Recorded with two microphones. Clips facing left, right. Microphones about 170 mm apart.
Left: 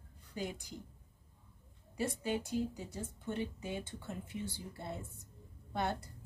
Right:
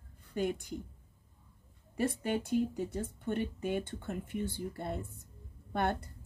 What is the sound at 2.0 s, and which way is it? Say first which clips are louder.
A woman's voice: right 4 dB; 55° right (ahead or behind).